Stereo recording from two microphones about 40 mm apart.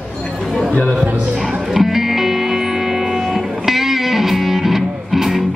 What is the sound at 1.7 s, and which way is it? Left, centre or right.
Music, centre.